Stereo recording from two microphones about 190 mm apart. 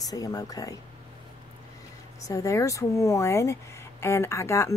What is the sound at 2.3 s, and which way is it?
Speech, 15° left (ahead or behind).